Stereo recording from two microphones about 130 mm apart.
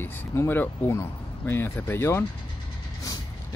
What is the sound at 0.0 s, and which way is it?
Speech, 15° left (ahead or behind).